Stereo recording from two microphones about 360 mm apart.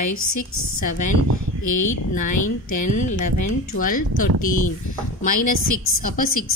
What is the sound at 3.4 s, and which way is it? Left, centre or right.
Speech, left.